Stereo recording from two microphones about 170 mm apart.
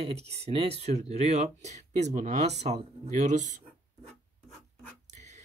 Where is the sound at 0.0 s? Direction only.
35° right (ahead or behind).